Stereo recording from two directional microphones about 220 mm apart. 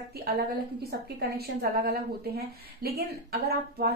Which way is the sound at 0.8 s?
45° right (ahead or behind).